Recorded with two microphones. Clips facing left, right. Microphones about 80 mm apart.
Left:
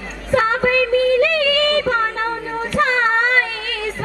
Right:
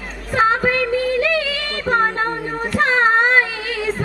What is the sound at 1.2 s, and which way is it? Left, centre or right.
Music, centre.